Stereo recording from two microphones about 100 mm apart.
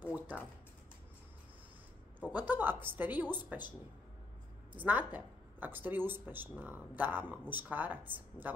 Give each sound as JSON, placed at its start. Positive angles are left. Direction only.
{"t": 0.0, "sound": "a sound", "side_deg": -15}
{"t": 2.3, "sound": "speech", "side_deg": -20}
{"t": 4.7, "sound": "speech", "side_deg": -15}